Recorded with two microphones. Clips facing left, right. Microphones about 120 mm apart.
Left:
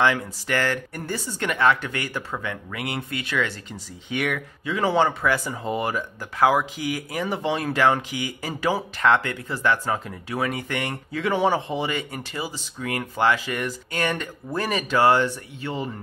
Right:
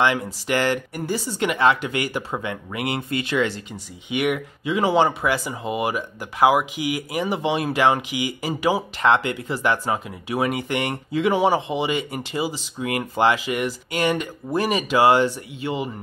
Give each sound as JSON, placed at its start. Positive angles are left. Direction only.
{"t": 0.0, "sound": "speech", "side_deg": -20}